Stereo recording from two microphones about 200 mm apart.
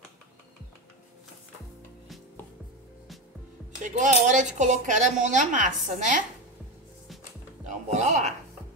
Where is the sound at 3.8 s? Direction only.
40° right (ahead or behind).